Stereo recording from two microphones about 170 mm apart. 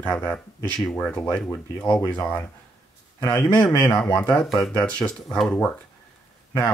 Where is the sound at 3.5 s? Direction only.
5° left (ahead or behind).